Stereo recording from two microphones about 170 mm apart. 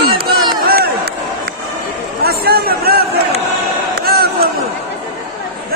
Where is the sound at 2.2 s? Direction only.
65° right (ahead or behind).